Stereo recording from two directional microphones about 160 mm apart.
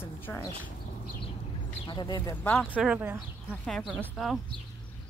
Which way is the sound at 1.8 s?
30° left (ahead or behind).